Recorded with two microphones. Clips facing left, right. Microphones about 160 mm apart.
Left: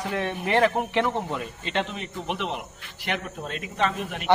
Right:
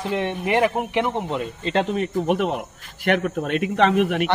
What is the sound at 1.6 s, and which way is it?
Speech, 35° right (ahead or behind).